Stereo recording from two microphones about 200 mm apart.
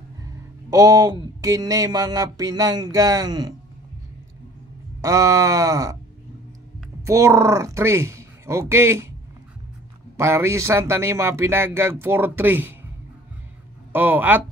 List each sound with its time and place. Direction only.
0.2 s speech: 15° right (ahead or behind)
5.0 s speech: 15° right (ahead or behind)
7.1 s speech: 15° right (ahead or behind)
10.1 s speech: 15° right (ahead or behind)
13.9 s speech: 10° right (ahead or behind)